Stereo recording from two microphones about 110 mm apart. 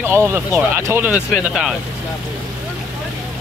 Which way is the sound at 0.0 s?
20° right (ahead or behind).